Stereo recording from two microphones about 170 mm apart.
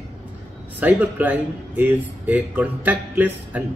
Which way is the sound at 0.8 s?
10° right (ahead or behind).